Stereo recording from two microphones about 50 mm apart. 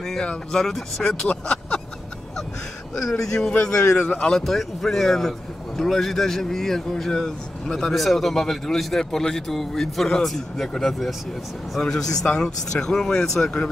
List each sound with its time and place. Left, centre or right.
0.2 s speech: centre
3.0 s speech: centre